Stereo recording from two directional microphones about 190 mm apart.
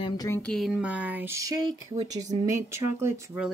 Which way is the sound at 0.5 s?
Centre (ahead or behind).